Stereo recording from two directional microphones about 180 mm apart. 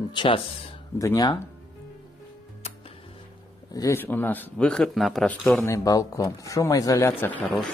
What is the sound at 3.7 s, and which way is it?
Speech, 15° left (ahead or behind).